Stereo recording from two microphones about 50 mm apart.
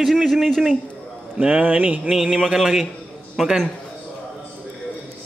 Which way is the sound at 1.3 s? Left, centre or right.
Right.